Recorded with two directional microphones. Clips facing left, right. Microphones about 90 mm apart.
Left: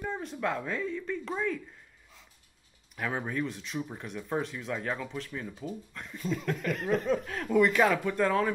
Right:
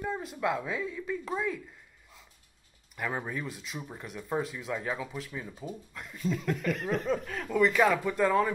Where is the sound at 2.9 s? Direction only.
Centre (ahead or behind).